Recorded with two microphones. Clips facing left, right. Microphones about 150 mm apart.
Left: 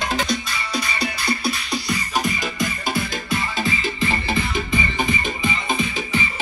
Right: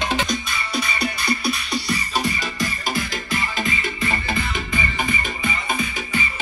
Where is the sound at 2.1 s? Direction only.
20° left (ahead or behind).